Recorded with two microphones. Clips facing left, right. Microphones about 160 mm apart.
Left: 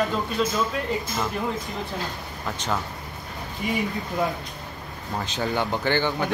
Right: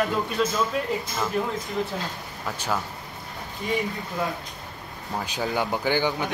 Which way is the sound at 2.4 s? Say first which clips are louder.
Even; 5° right (ahead or behind).